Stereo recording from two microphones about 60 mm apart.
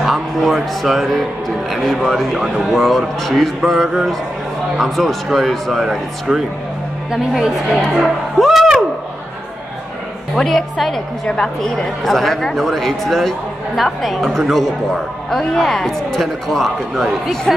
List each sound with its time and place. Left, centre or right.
0.0 s speech: centre
2.3 s a woman's voice: centre
10.3 s a woman's voice: centre